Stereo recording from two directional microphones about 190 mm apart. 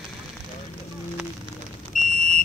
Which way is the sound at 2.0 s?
45° left (ahead or behind).